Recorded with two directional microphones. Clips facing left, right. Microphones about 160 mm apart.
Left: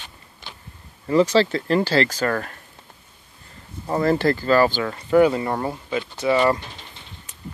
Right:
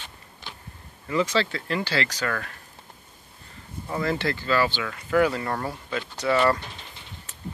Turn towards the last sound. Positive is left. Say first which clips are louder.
# left 3 dB
turn(degrees=15)  # may be behind; listen again after turning